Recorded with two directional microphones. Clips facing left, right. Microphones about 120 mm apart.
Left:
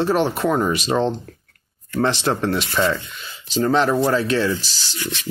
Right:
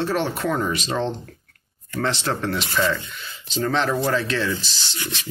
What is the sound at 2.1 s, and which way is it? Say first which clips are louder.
Speech: left 4 dB; 20° left (ahead or behind).